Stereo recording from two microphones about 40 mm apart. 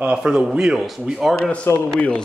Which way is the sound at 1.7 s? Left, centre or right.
Left.